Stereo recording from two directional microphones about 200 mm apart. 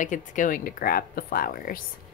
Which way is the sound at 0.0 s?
40° left (ahead or behind).